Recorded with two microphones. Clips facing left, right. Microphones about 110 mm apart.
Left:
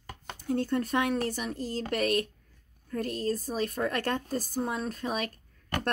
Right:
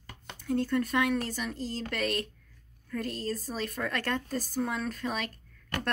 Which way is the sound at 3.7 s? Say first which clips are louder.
Even; 40° left (ahead or behind).